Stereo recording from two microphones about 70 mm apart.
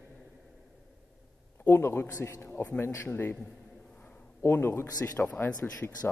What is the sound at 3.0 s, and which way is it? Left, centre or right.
Speech, left.